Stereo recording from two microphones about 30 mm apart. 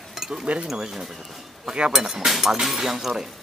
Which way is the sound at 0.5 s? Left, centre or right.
Right.